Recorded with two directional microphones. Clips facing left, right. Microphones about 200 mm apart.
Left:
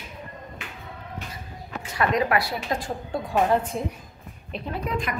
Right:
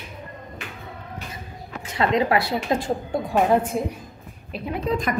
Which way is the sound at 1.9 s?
25° right (ahead or behind).